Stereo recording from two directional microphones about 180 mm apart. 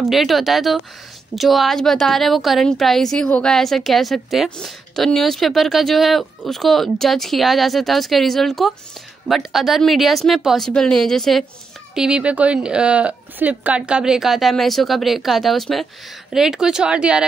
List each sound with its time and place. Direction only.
0.0 s a woman's voice: centre (ahead or behind)